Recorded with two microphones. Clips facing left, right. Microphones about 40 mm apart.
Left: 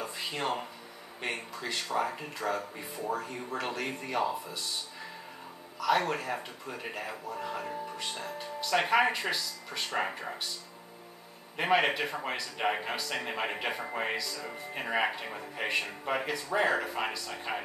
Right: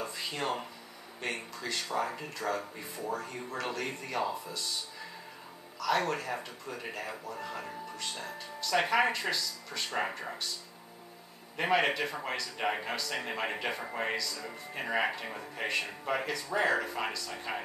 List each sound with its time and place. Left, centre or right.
0.0 s a sound: centre
1.2 s speech: centre
5.8 s speech: centre
11.5 s speech: centre